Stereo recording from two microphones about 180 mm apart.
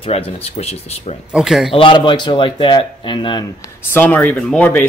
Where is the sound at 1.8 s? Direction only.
30° left (ahead or behind).